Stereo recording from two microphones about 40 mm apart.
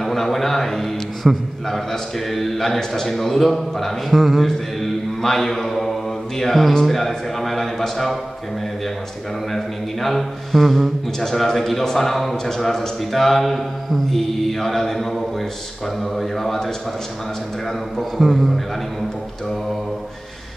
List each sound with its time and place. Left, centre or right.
0.0 s a man's voice: centre
4.5 s mantra: centre
9.5 s a man's voice: centre
18.1 s a man's voice: centre